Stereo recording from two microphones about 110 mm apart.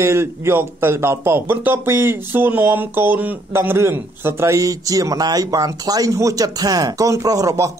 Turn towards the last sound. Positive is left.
turn(degrees=-30)  # may be behind; listen again after turning